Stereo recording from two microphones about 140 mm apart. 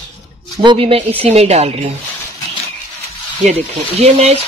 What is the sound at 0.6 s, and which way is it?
Speech, 35° right (ahead or behind).